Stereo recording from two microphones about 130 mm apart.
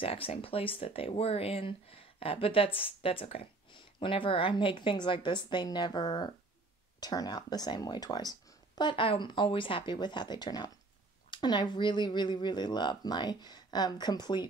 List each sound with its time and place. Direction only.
0.0 s speech: 45° left (ahead or behind)